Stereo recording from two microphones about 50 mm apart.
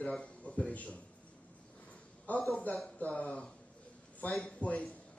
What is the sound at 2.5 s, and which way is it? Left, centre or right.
Speech, left.